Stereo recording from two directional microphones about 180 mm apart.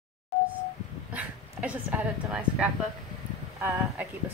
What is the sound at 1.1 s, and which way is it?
A woman's voice, 10° right (ahead or behind).